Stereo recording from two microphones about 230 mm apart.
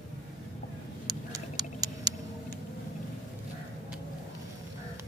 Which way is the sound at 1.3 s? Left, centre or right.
Centre.